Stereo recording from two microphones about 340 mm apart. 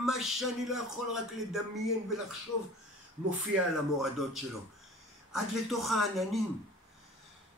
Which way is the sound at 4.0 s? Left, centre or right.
Centre.